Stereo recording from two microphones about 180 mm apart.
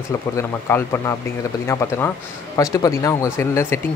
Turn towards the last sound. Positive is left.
turn(degrees=15)  # may be behind; listen again after turning